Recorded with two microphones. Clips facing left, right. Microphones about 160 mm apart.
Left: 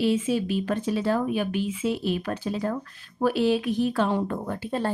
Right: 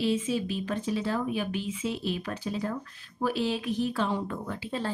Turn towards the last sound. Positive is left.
turn(degrees=50)  # may be behind; listen again after turning